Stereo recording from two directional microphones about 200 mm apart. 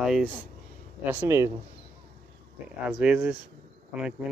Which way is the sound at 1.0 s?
10° right (ahead or behind).